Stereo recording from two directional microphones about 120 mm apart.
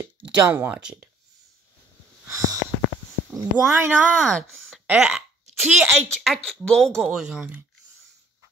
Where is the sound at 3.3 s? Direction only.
20° right (ahead or behind).